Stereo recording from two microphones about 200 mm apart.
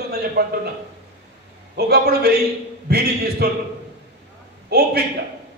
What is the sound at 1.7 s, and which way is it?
A man's voice, 50° right (ahead or behind).